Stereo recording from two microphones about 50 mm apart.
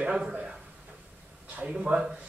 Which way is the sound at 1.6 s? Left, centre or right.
Right.